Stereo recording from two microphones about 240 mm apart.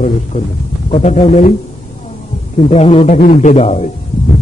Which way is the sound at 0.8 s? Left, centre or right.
Left.